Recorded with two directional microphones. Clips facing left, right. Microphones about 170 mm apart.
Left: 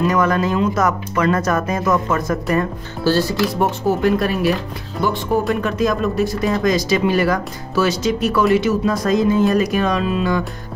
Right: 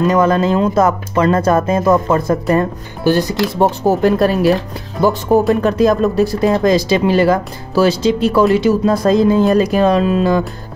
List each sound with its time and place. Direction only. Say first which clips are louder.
0.1 s speech: right 4 dB; 30° right (ahead or behind)
3.0 s speech: right 3 dB; 15° right (ahead or behind)
3.5 s speech: right 4 dB; 35° right (ahead or behind)